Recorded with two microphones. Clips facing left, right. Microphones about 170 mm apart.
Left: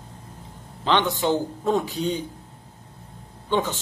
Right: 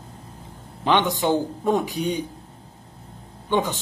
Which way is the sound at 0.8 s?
15° right (ahead or behind).